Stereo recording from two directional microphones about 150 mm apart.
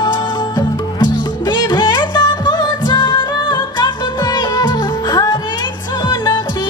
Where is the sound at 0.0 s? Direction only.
25° left (ahead or behind).